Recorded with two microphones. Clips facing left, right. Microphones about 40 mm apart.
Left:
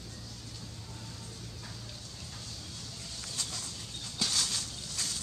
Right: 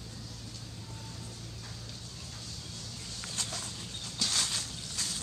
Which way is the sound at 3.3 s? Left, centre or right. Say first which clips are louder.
Right 2 dB; right.